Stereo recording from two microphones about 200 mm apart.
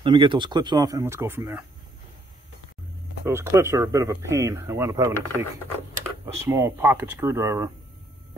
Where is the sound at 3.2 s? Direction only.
10° right (ahead or behind).